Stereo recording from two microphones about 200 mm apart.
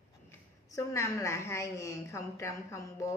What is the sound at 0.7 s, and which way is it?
A woman's voice, 15° left (ahead or behind).